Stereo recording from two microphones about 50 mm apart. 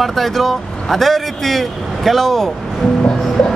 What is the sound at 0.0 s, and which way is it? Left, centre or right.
Speech, centre.